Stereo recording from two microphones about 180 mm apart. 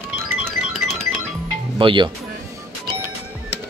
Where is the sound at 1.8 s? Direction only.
25° right (ahead or behind).